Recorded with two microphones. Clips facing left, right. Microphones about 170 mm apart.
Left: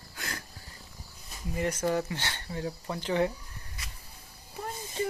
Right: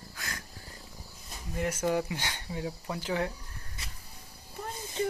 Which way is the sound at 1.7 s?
10° right (ahead or behind).